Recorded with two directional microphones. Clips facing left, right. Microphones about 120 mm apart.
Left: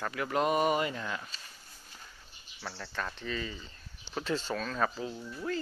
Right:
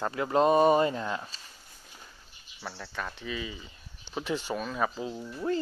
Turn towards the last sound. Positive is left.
turn(degrees=-25)  # may be behind; listen again after turning